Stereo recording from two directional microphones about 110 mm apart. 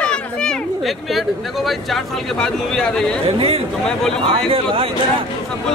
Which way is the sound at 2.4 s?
5° left (ahead or behind).